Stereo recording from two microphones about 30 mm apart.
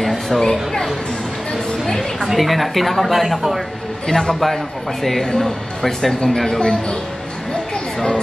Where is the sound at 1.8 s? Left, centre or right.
Centre.